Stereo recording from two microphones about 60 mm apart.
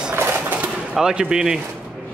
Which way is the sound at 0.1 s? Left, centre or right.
Right.